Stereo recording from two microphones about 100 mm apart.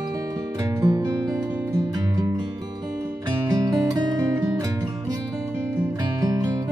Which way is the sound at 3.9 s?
40° right (ahead or behind).